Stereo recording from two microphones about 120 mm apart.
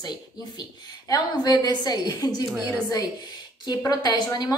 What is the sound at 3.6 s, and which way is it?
Speech, 35° left (ahead or behind).